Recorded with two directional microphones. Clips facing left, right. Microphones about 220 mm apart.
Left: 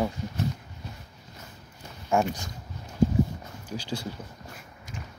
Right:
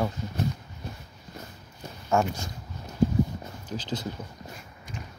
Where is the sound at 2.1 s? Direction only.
15° left (ahead or behind).